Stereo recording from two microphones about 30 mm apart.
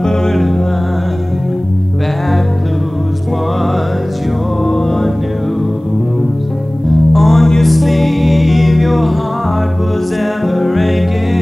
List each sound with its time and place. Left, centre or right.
0.0 s music: centre
4.6 s music: centre
7.2 s music: centre
10.4 s music: centre